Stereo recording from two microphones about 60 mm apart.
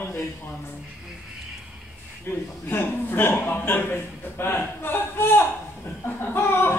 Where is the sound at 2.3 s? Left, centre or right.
Left.